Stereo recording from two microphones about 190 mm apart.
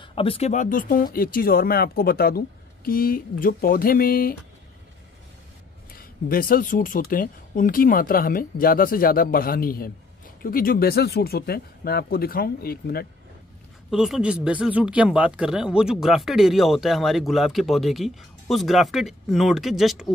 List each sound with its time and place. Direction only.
0.0 s speech: 30° left (ahead or behind); by 4.4 s 50° left (ahead or behind)
5.9 s speech: 50° left (ahead or behind)
13.8 s speech: centre (ahead or behind)